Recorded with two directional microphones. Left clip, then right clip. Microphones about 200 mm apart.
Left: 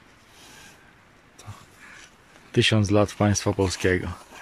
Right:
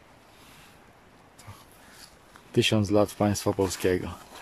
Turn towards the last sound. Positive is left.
turn(degrees=-5)  # may be behind; listen again after turning